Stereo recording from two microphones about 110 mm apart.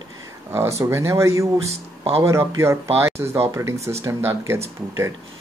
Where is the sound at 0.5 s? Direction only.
25° right (ahead or behind).